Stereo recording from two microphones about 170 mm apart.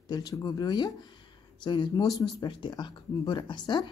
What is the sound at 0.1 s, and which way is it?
Speech, 20° left (ahead or behind).